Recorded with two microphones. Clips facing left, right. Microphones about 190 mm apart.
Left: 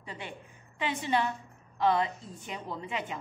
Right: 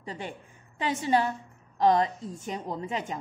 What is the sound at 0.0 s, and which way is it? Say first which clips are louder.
A woman's voice: right 5 dB; 40° right (ahead or behind).